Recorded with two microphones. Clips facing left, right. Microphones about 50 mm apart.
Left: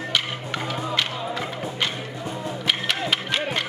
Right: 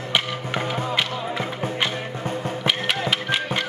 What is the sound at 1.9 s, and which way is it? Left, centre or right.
Music, right.